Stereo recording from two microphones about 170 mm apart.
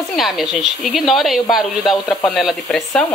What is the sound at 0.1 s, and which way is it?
Speech, centre (ahead or behind).